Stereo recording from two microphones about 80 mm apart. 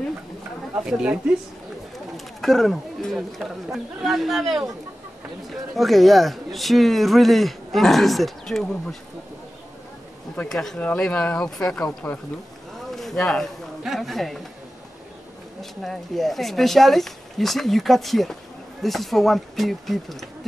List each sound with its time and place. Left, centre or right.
0.8 s a woman's voice: centre
2.1 s speech: centre
10.5 s speech: centre
12.0 s speech: left
12.9 s speech: centre
15.6 s speech: centre